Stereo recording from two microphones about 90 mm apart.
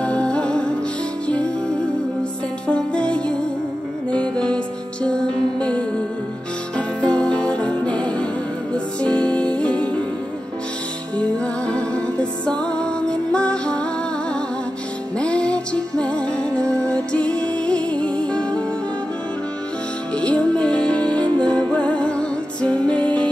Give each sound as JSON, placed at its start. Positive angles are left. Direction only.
{"t": 0.0, "sound": "music", "side_deg": 10}
{"t": 7.0, "sound": "music", "side_deg": 15}
{"t": 11.1, "sound": "music", "side_deg": 10}
{"t": 15.1, "sound": "music", "side_deg": 10}
{"t": 20.2, "sound": "music", "side_deg": 10}